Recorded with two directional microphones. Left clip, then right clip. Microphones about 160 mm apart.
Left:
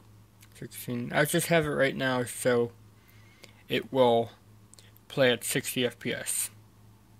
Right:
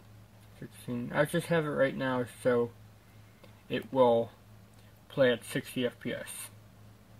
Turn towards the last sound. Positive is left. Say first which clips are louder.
# left 4 dB
turn(degrees=20)  # may be behind; listen again after turning